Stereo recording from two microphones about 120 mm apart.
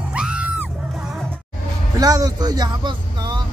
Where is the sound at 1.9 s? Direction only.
30° right (ahead or behind).